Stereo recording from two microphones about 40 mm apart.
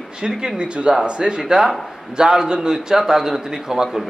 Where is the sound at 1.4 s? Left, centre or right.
Centre.